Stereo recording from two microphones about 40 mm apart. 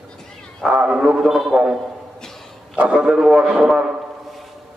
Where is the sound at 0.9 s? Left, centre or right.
Centre.